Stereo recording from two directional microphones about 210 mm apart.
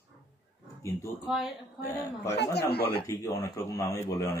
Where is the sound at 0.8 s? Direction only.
15° left (ahead or behind).